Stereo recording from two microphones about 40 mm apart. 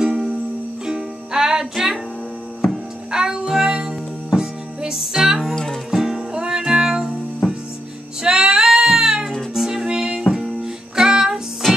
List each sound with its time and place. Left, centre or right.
0.0 s music: centre
5.5 s music: centre
5.9 s music: centre
8.2 s music: centre
11.6 s music: centre